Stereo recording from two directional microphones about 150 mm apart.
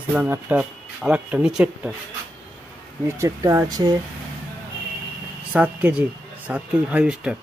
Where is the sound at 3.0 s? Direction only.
20° right (ahead or behind).